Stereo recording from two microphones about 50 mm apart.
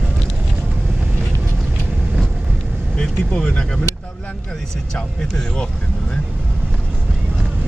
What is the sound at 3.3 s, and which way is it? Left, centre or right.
Speech, left.